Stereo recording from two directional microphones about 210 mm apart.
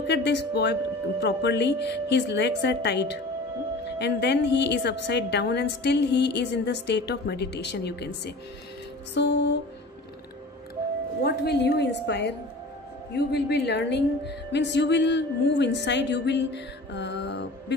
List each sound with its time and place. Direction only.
0.0 s a woman's voice: 55° left (ahead or behind)
11.2 s a woman's voice: 50° left (ahead or behind)